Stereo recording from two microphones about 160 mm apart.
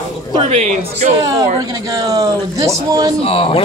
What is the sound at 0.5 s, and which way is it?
Speech, 45° right (ahead or behind).